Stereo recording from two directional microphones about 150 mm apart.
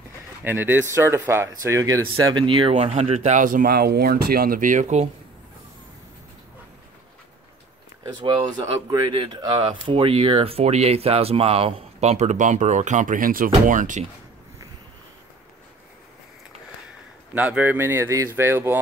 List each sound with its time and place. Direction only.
0.4 s speech: 15° right (ahead or behind); by 3.2 s 40° right (ahead or behind)
3.2 s speech: 55° right (ahead or behind)
8.0 s speech: 30° right (ahead or behind); by 14.0 s 60° right (ahead or behind)
17.3 s speech: 10° right (ahead or behind)